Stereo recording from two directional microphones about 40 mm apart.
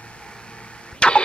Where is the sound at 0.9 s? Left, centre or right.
Left.